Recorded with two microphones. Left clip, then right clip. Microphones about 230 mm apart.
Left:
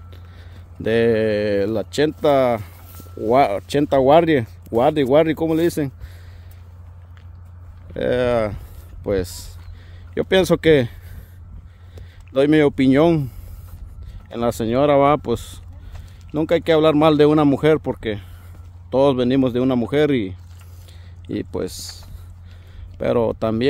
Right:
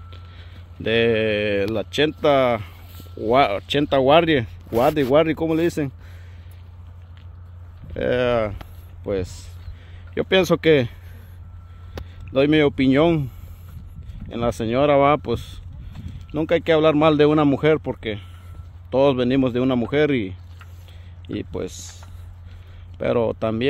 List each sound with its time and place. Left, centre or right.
0.1 s a sound: centre
2.0 s speech: centre
7.9 s speech: centre
10.1 s speech: centre
12.3 s speech: centre
14.3 s speech: centre